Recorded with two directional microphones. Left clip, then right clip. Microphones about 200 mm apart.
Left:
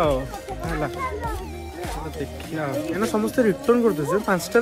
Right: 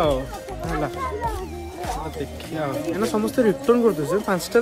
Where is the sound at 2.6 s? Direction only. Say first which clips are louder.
Right 1 dB; 5° right (ahead or behind).